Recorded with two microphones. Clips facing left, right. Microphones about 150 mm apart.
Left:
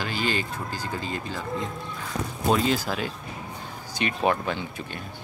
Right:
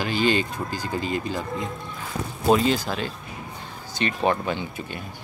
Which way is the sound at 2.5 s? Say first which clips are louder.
Right 3 dB; 5° left (ahead or behind).